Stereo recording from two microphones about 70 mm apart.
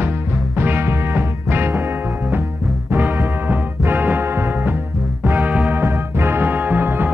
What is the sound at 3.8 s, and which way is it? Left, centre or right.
Music, right.